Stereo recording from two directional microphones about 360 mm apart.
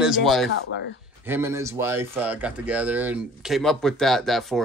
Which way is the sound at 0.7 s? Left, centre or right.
Left.